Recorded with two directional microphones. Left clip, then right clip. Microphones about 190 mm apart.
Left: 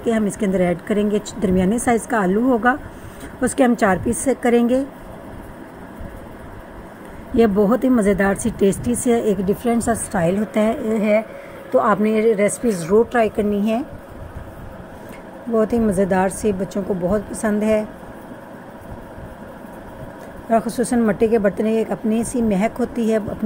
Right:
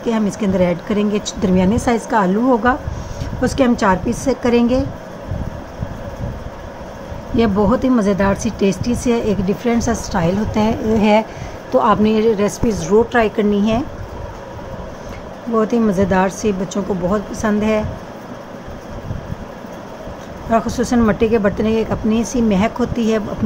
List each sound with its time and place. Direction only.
0.4 s speech: 10° left (ahead or behind)
7.3 s a woman's voice: 15° left (ahead or behind)
15.5 s speech: 15° left (ahead or behind)
20.4 s speech: 15° left (ahead or behind)